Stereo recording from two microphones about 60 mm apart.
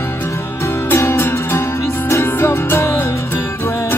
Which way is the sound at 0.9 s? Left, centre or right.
Left.